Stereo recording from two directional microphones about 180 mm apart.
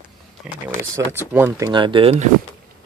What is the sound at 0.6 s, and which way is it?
Speech, 15° right (ahead or behind).